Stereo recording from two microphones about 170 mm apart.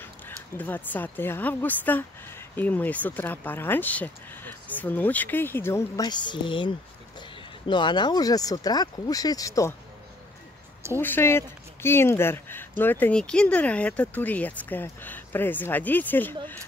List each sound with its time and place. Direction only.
0.6 s speech: 10° left (ahead or behind)
11.0 s speech: 10° left (ahead or behind)